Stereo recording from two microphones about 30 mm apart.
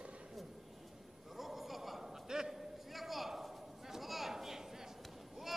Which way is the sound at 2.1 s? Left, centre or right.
Centre.